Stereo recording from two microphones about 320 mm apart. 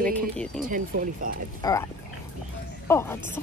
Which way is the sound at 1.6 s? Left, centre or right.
Centre.